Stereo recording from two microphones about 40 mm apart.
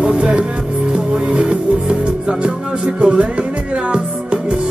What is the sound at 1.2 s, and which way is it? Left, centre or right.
Speech, right.